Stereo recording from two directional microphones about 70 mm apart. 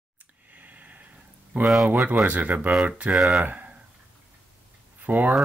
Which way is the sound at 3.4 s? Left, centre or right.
Right.